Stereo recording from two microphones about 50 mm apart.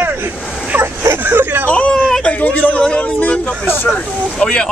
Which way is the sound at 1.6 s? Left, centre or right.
Left.